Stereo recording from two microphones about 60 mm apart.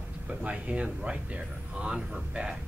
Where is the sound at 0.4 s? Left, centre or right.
Right.